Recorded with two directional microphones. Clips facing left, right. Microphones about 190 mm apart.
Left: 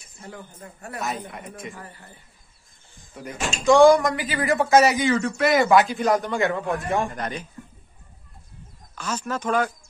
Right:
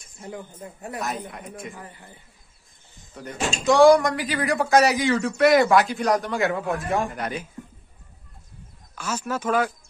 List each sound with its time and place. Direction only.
0.2 s a man's voice: 15° right (ahead or behind)
0.9 s a man's voice: centre (ahead or behind)
1.8 s speech: 15° right (ahead or behind)
3.6 s a man's voice: centre (ahead or behind)
8.9 s speech: 10° right (ahead or behind)